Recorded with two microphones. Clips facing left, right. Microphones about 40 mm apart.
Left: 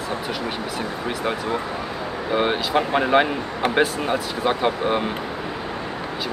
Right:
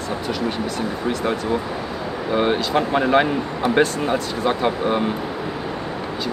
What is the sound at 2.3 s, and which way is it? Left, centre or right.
Speech, centre.